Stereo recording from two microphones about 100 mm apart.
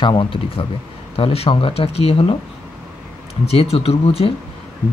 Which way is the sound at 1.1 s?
75° left (ahead or behind).